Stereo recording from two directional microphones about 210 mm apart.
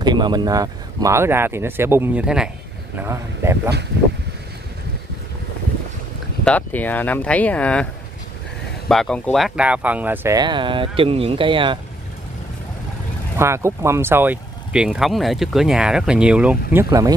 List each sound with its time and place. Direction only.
0.0 s speech: 20° right (ahead or behind)
6.4 s speech: 5° left (ahead or behind); by 11.8 s 25° right (ahead or behind)
13.4 s speech: 10° right (ahead or behind)